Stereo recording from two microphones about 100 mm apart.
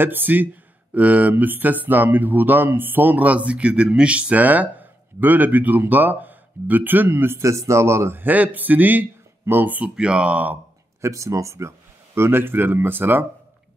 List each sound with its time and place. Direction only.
0.0 s speech: 20° right (ahead or behind)
11.0 s speech: 30° right (ahead or behind)